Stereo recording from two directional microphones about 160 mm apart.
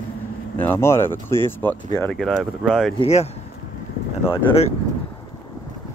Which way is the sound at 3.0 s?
45° left (ahead or behind).